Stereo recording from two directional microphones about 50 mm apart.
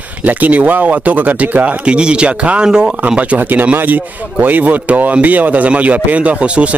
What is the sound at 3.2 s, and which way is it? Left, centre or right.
Speech, right.